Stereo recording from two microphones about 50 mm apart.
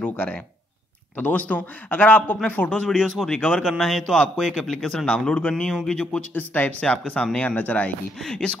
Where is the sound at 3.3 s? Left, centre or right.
Left.